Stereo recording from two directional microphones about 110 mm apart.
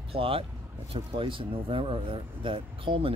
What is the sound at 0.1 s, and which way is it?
Speech, 55° right (ahead or behind).